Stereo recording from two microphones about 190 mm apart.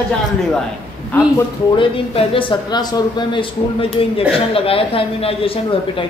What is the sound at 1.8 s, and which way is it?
Speech, 25° left (ahead or behind).